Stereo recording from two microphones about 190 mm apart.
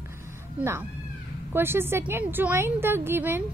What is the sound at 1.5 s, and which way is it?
A woman's voice, 10° right (ahead or behind).